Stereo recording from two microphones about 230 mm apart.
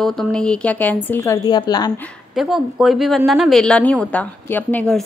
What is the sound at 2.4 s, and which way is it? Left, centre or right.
A woman's voice, centre.